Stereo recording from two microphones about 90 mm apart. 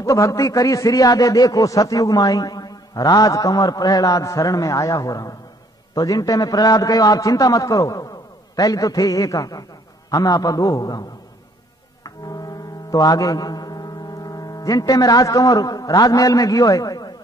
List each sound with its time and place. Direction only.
0.0 s a man's voice: 35° left (ahead or behind)
12.0 s mantra: 45° left (ahead or behind)